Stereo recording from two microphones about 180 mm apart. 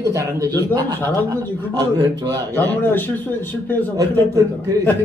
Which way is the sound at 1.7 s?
25° right (ahead or behind).